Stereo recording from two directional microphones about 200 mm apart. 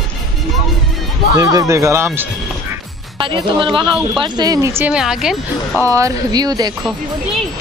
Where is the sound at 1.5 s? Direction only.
15° right (ahead or behind).